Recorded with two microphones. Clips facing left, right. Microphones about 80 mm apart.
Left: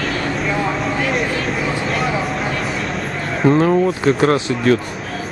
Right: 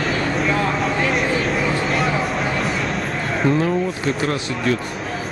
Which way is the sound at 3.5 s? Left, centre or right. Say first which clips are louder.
Left 5 dB; left.